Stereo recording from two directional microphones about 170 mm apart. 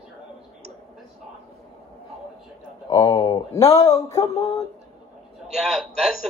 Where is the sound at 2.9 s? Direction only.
25° left (ahead or behind).